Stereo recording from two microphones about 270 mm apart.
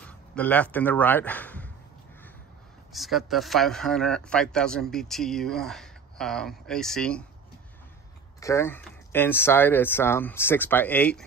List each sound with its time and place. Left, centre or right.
0.0 s speech: centre
2.9 s speech: centre
8.4 s speech: centre